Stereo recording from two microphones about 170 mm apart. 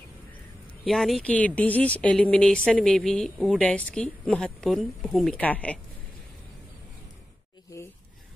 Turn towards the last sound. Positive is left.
turn(degrees=20)  # may be behind; listen again after turning